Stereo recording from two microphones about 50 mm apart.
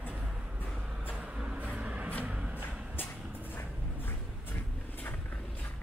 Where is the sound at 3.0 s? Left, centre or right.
Left.